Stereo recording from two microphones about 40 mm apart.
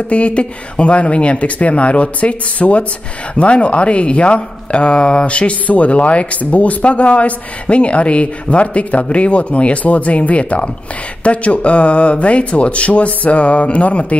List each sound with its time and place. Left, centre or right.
0.1 s speech: left